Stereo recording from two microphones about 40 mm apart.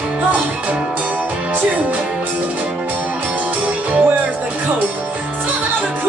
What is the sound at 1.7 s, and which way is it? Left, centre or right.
Music, right.